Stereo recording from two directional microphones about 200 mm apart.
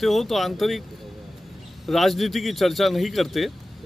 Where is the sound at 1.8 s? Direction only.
Centre (ahead or behind).